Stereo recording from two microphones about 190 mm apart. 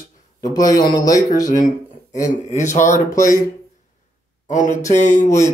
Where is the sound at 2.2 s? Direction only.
40° left (ahead or behind).